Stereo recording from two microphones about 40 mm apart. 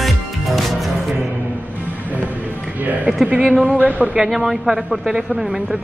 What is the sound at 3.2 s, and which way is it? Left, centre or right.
Speech, right.